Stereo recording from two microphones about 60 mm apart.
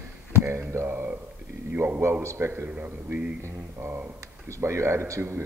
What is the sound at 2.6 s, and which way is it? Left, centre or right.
Speech, right.